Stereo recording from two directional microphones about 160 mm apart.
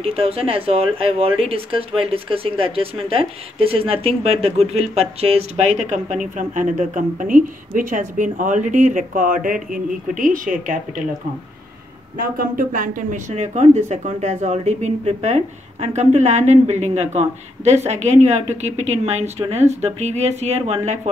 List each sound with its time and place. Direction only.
0.0 s speech: 40° right (ahead or behind); by 11.1 s 55° right (ahead or behind)
12.4 s speech: 60° right (ahead or behind)
13.3 s a woman's voice: 45° right (ahead or behind)